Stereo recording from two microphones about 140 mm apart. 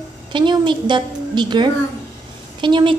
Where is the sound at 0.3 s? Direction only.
35° right (ahead or behind).